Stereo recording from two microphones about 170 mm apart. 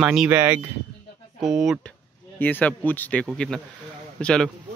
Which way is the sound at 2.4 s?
10° left (ahead or behind).